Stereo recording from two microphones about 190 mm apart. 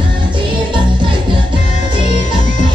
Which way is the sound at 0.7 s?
25° right (ahead or behind).